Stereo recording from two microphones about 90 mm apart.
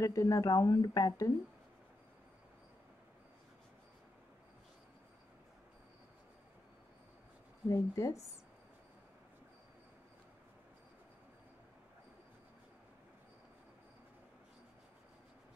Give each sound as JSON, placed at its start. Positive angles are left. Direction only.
{"t": 0.0, "sound": "speech", "side_deg": 35}
{"t": 7.6, "sound": "speech", "side_deg": 35}